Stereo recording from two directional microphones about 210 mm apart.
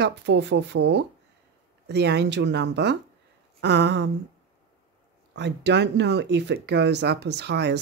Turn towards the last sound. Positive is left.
turn(degrees=-55)  # may be behind; listen again after turning